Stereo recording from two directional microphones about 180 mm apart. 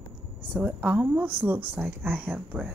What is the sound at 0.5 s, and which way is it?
Speech, 10° right (ahead or behind).